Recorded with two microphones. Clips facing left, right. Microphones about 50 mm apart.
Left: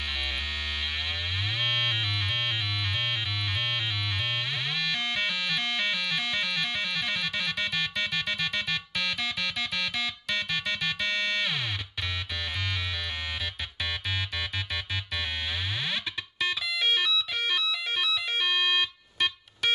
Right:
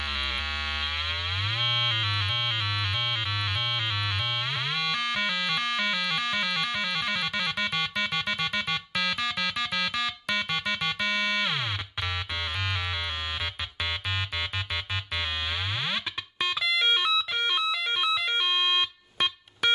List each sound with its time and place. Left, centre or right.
4.7 s music: right
10.5 s music: right
15.9 s music: right